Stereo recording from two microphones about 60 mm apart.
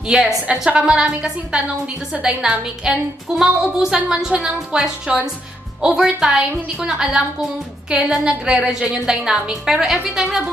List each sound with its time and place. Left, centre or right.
0.1 s a woman's voice: centre